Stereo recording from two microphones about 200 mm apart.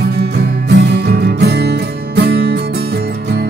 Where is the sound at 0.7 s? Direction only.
55° right (ahead or behind).